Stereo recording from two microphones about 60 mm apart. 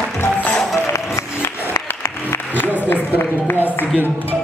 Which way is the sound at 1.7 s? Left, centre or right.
Left.